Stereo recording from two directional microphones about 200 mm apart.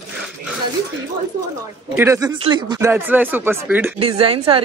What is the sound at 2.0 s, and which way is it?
Speech, 15° right (ahead or behind).